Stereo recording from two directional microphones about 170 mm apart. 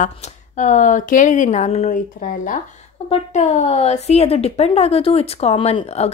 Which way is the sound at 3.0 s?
40° left (ahead or behind).